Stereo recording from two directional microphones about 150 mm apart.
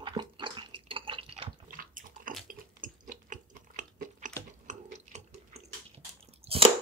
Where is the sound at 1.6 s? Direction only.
65° right (ahead or behind).